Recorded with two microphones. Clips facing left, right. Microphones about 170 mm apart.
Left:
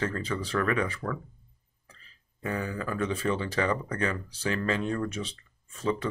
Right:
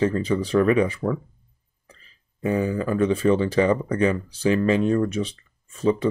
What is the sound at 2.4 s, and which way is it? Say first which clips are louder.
Speech: right 9 dB; 20° right (ahead or behind).